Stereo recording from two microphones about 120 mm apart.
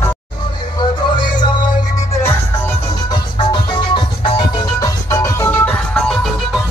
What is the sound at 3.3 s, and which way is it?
Music, 40° left (ahead or behind).